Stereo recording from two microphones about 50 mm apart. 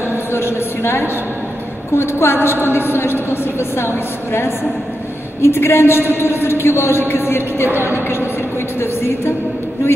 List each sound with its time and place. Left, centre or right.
0.3 s a woman's voice: left